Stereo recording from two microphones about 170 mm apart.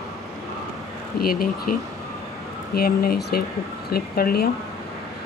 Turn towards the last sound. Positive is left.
turn(degrees=60)  # may be behind; listen again after turning